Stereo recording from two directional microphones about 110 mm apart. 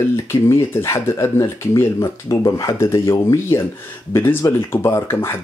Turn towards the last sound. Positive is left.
turn(degrees=25)  # may be behind; listen again after turning